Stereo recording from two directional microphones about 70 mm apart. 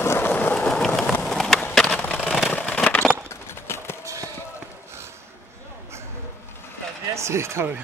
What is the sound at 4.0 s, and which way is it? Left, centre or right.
Basketball bounce, right.